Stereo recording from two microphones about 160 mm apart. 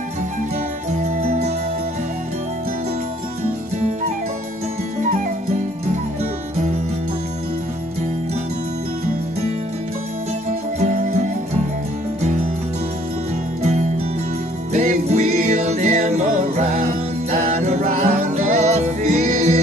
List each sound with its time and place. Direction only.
1.0 s music: 50° right (ahead or behind)
5.0 s music: 50° right (ahead or behind)
10.8 s music: 50° right (ahead or behind)
13.6 s music: 50° right (ahead or behind)